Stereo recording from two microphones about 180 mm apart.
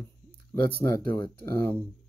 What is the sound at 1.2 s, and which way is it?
Speech, 10° left (ahead or behind).